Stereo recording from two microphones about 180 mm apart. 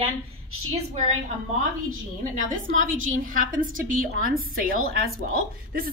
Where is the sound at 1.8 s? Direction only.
45° right (ahead or behind).